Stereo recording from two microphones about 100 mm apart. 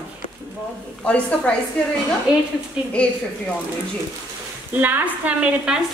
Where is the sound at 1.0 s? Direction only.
10° left (ahead or behind).